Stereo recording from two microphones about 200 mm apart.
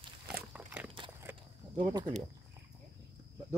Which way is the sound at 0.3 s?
10° right (ahead or behind).